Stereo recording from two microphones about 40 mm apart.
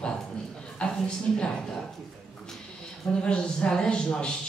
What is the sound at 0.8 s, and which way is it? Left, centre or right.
Speech, left.